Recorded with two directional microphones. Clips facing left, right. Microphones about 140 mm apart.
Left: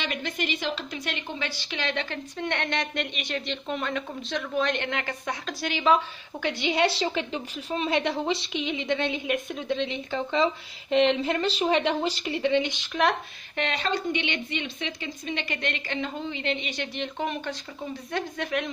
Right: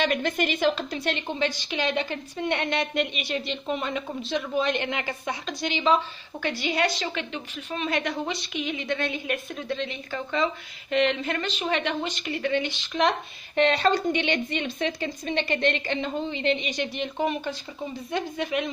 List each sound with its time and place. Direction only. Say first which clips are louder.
0.0 s a woman's voice: right 6 dB; 50° right (ahead or behind)
0.9 s a woman's voice: right 5 dB; 30° right (ahead or behind)
1.5 s a woman's voice: right 4 dB; 15° right (ahead or behind); by 12.4 s 35° left (ahead or behind)
12.4 s speech: left 2 dB; 20° left (ahead or behind)
13.6 s a woman's voice: right 7 dB; 35° right (ahead or behind); by 18.7 s 5° right (ahead or behind)